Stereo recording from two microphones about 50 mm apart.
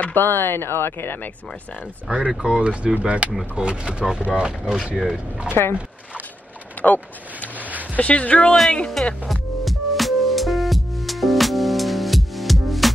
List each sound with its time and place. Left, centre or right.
0.1 s speech: left
2.0 s speech: centre
5.5 s speech: left
6.8 s a sound: left
7.9 s speech: left
9.0 s speech: centre
9.3 s music: centre